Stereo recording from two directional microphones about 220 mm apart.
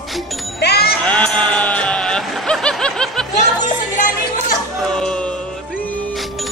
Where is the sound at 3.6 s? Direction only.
35° left (ahead or behind).